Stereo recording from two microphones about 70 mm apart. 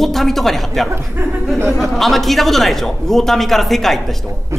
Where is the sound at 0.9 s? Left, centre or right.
Right.